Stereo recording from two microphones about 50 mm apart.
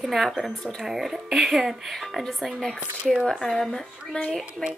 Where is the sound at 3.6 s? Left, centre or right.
Centre.